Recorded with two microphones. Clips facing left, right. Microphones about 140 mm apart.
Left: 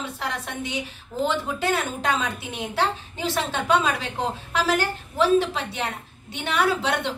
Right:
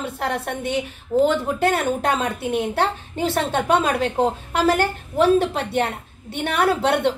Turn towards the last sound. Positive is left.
turn(degrees=-55)  # may be behind; listen again after turning